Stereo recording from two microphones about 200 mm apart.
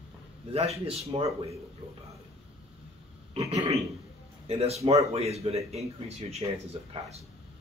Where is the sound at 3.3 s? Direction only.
30° right (ahead or behind).